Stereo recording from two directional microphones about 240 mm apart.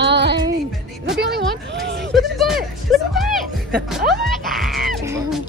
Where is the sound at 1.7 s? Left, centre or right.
Right.